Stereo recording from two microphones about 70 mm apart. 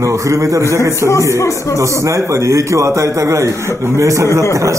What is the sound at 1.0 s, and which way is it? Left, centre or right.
Speech, right.